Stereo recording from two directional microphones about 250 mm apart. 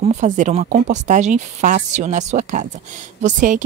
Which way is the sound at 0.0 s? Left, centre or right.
Right.